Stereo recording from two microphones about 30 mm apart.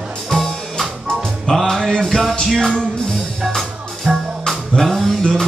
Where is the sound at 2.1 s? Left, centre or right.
Centre.